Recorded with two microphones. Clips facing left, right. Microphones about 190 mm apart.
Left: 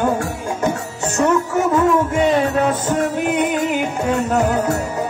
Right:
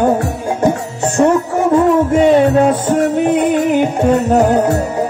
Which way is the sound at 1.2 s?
35° right (ahead or behind).